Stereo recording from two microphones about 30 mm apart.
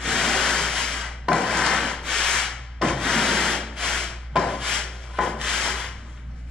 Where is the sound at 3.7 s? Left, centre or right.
Left.